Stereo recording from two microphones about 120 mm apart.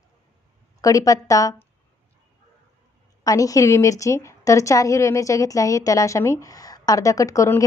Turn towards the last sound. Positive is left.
turn(degrees=25)  # may be behind; listen again after turning